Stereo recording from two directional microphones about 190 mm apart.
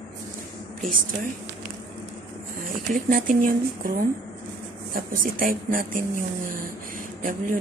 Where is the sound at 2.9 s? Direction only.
45° right (ahead or behind).